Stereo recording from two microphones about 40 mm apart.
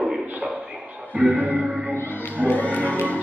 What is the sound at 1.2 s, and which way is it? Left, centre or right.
Music, right.